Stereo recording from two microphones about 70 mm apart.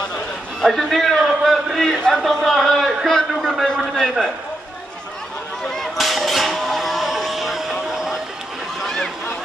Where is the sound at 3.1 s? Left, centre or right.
Centre.